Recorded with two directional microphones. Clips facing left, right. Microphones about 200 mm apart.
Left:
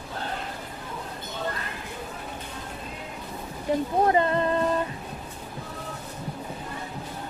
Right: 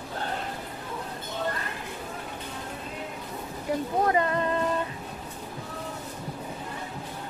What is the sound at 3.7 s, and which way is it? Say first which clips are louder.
Speech: left 3 dB; 25° left (ahead or behind).